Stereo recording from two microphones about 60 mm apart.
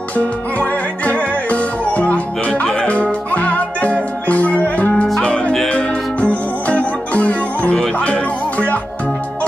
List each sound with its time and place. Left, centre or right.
0.1 s music: left